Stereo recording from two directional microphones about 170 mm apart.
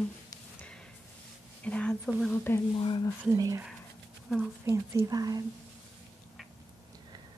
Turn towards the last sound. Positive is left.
turn(degrees=-20)  # may be behind; listen again after turning